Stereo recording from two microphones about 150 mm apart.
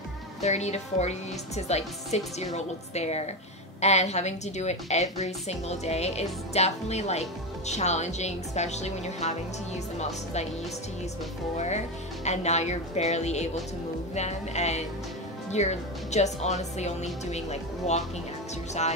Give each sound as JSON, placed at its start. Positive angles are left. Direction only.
{"t": 0.4, "sound": "a woman's voice", "side_deg": 50}
{"t": 11.5, "sound": "a woman's voice", "side_deg": 50}